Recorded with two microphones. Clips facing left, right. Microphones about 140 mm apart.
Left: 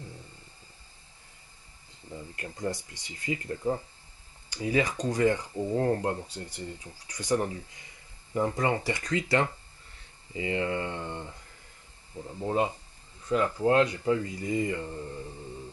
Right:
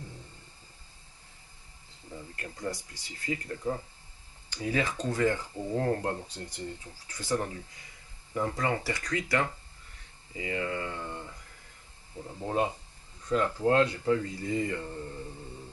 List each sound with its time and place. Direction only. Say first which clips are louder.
2.3 s speech: left 3 dB; 20° left (ahead or behind)
12.4 s speech: left 2 dB; centre (ahead or behind)
13.3 s speech: left 1 dB; 15° left (ahead or behind)